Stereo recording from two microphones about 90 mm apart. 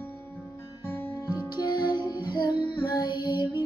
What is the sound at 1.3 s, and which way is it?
Music, 50° left (ahead or behind).